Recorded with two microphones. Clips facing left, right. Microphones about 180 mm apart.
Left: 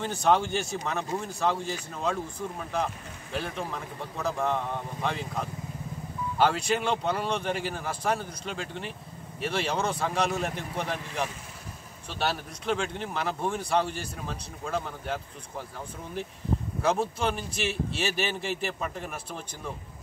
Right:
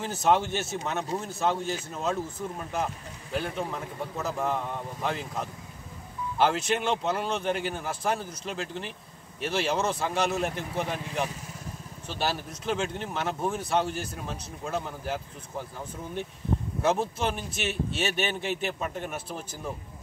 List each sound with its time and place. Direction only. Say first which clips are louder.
0.0 s speech: even; 5° right (ahead or behind)
3.3 s speech: right 2 dB; centre (ahead or behind)
16.8 s speech: even; centre (ahead or behind)